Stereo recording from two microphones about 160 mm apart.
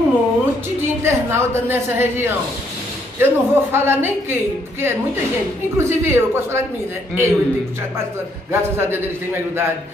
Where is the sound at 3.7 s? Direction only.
15° right (ahead or behind).